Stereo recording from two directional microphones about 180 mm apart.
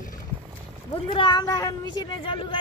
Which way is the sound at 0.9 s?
25° left (ahead or behind).